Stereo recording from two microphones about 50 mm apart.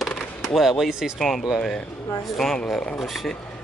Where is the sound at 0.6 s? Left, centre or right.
Centre.